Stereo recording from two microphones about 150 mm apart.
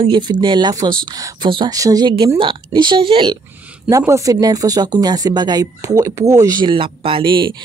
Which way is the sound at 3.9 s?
20° right (ahead or behind).